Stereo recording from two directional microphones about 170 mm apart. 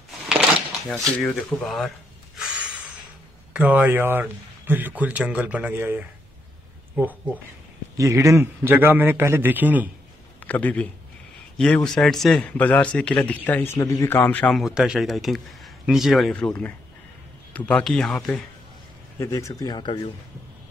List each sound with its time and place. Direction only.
0.8 s speech: centre (ahead or behind)
2.3 s a sound: 5° right (ahead or behind)
3.5 s speech: 10° right (ahead or behind)
8.0 s speech: 15° right (ahead or behind)
10.4 s a man's voice: 10° left (ahead or behind)
14.6 s speech: 5° right (ahead or behind)
19.1 s speech: 20° left (ahead or behind)